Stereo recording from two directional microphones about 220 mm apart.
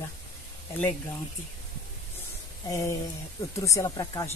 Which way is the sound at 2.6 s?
15° left (ahead or behind).